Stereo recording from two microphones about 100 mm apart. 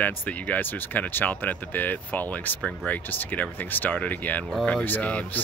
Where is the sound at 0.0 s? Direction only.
15° left (ahead or behind).